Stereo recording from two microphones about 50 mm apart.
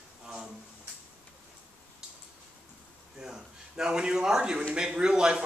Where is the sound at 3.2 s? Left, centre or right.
Centre.